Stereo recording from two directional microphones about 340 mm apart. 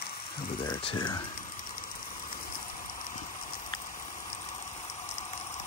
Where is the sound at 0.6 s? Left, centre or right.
Centre.